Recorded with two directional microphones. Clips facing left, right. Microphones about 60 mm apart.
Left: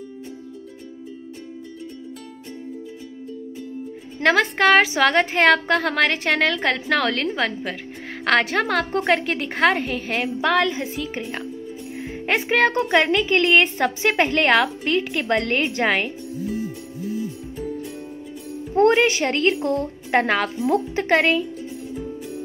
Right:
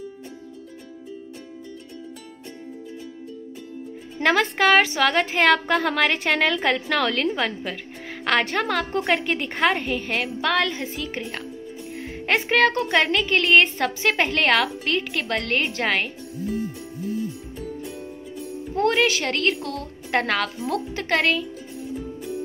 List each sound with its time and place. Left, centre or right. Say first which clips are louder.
4.2 s a woman's voice: left 2 dB; centre
19.0 s speech: left 3 dB; centre